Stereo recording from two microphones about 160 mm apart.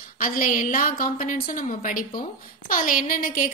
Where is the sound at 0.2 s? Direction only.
55° left (ahead or behind).